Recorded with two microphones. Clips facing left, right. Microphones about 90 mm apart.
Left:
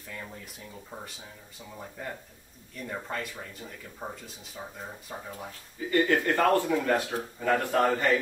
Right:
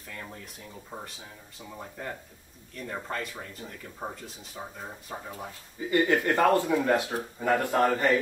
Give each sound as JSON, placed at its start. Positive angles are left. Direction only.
{"t": 0.1, "sound": "speech", "side_deg": 5}
{"t": 2.8, "sound": "speech", "side_deg": 0}
{"t": 5.3, "sound": "speech", "side_deg": -15}
{"t": 7.7, "sound": "speech", "side_deg": -5}